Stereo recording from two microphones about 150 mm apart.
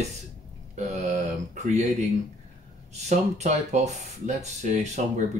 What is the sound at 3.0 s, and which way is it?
Speech, 50° right (ahead or behind).